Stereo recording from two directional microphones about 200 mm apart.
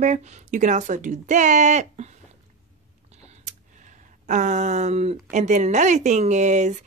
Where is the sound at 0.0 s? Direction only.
35° right (ahead or behind).